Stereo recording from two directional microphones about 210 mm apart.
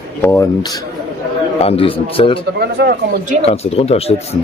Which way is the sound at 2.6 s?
50° right (ahead or behind).